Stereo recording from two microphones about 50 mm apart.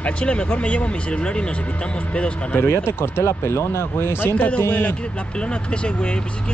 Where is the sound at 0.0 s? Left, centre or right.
Left.